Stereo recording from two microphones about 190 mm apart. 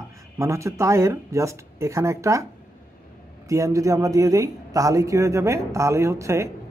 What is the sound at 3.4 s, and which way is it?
A woman's voice, 15° right (ahead or behind).